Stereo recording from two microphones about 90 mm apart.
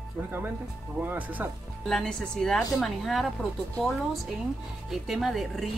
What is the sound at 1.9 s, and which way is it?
Speech, 5° left (ahead or behind).